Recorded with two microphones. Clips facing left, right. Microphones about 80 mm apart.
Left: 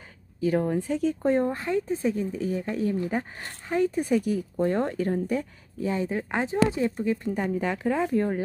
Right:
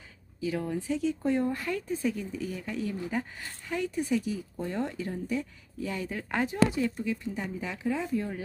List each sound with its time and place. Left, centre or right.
0.4 s speech: left
5.9 s speech: left
7.2 s speech: left